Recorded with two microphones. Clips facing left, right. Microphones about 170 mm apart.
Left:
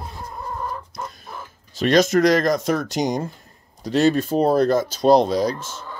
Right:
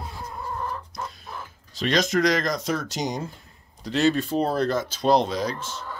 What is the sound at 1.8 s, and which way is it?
Speech, 45° left (ahead or behind).